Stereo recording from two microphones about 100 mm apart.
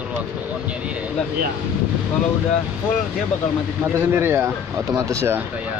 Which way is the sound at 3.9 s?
25° right (ahead or behind).